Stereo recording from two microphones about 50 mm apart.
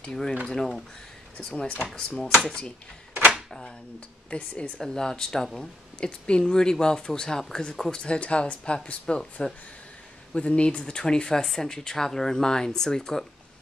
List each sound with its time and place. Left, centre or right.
0.0 s speech: centre
4.3 s speech: left
5.9 s speech: centre
8.0 s speech: left